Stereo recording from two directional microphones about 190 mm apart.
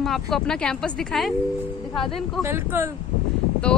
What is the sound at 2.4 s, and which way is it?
Speech, 10° right (ahead or behind).